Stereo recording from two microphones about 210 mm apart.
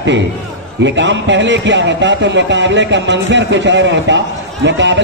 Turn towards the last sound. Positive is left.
turn(degrees=-60)  # may be behind; listen again after turning